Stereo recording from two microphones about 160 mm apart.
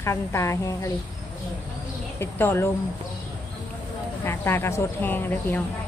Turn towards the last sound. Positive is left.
turn(degrees=10)  # may be behind; listen again after turning